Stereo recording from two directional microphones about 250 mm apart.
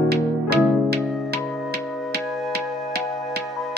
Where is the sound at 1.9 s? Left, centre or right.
Centre.